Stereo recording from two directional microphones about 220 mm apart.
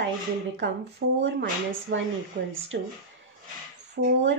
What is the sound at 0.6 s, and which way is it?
A woman's voice, 50° right (ahead or behind).